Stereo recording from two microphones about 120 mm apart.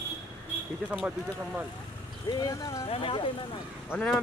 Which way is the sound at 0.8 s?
10° right (ahead or behind).